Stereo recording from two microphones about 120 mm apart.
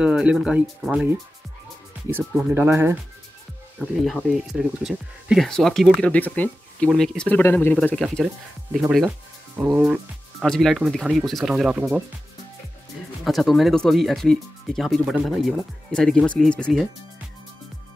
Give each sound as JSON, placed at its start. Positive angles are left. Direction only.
{"t": 0.0, "sound": "speech", "side_deg": -10}
{"t": 2.1, "sound": "speech", "side_deg": -15}
{"t": 3.8, "sound": "speech", "side_deg": 0}
{"t": 6.1, "sound": "speech", "side_deg": 15}
{"t": 6.9, "sound": "speech", "side_deg": 5}
{"t": 7.2, "sound": "speech", "side_deg": 15}
{"t": 8.0, "sound": "speech", "side_deg": 0}
{"t": 10.4, "sound": "speech", "side_deg": 5}
{"t": 13.2, "sound": "speech", "side_deg": 0}